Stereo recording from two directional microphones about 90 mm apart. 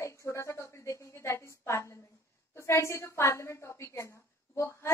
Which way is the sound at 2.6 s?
30° left (ahead or behind).